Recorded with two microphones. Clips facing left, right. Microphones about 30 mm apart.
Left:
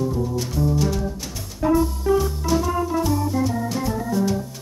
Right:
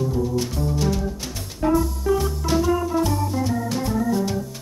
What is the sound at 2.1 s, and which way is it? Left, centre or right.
Organ, centre.